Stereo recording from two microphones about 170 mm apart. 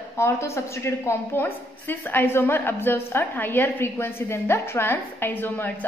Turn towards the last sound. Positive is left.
turn(degrees=10)  # may be behind; listen again after turning